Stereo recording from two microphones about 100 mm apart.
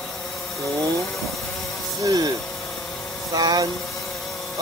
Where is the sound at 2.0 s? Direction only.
40° right (ahead or behind).